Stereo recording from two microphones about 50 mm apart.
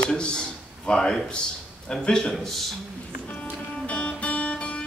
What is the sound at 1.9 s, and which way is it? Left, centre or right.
Speech, centre.